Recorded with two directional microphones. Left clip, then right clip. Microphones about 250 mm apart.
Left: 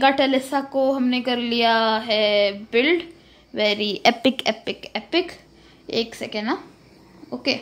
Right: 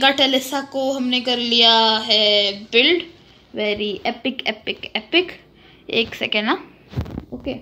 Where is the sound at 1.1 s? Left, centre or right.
Centre.